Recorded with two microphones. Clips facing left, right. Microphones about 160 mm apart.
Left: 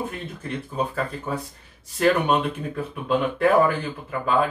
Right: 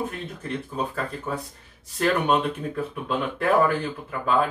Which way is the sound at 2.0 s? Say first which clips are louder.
Left 2 dB; 5° left (ahead or behind).